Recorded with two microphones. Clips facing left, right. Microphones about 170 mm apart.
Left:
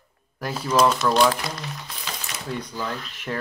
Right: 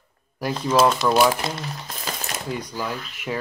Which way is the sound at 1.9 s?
45° right (ahead or behind).